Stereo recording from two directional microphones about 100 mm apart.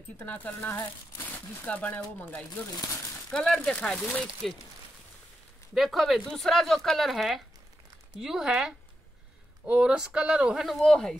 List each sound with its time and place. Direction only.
0.2 s speech: 20° left (ahead or behind)
2.7 s speech: 35° left (ahead or behind)
3.3 s speech: 5° left (ahead or behind)
5.8 s speech: centre (ahead or behind)